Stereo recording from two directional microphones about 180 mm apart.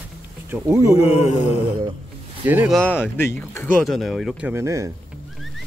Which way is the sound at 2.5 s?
10° right (ahead or behind).